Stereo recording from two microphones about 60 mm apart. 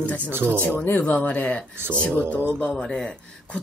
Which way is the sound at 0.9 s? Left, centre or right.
Left.